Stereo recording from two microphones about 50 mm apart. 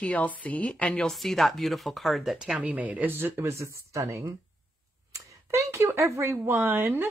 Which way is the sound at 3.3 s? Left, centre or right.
Right.